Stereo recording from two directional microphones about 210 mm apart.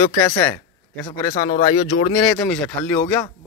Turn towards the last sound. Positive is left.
turn(degrees=5)  # may be behind; listen again after turning